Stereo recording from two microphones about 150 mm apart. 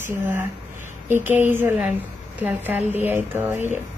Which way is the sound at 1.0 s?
15° right (ahead or behind).